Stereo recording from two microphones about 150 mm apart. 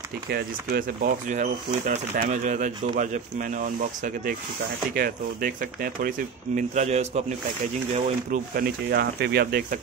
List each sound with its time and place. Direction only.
0.3 s speech: 85° right; by 4.4 s 60° right (ahead or behind)
4.9 s speech: 85° right; by 6.6 s 70° right (ahead or behind)
6.7 s a man's voice: 50° right (ahead or behind)
7.9 s speech: 70° right (ahead or behind); by 9.8 s 90° right